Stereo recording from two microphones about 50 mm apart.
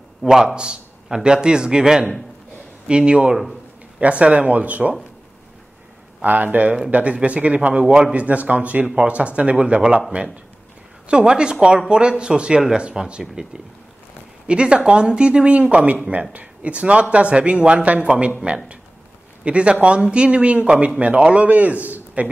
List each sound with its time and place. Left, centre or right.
0.2 s a man's voice: centre; by 4.9 s right
6.2 s a man's voice: right
11.1 s a man's voice: centre
14.5 s a man's voice: centre
19.4 s a man's voice: right